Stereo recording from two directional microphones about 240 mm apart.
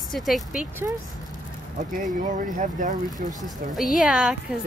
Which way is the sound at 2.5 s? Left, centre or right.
Right.